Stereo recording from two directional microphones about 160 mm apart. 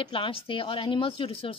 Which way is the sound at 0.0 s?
35° left (ahead or behind).